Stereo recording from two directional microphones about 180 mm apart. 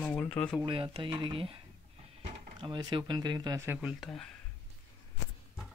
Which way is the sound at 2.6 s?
25° right (ahead or behind).